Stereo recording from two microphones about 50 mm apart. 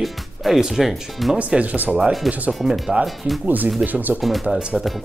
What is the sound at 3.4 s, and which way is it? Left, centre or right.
Speech, right.